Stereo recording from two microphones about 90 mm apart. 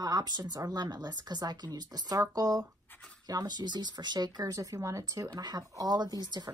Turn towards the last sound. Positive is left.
turn(degrees=-50)  # may be behind; listen again after turning